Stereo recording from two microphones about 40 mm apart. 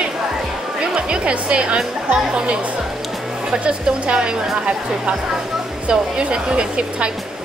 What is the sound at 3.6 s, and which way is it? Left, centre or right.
Speech, right.